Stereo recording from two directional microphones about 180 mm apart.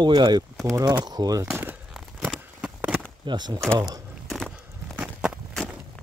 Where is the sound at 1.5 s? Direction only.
5° right (ahead or behind).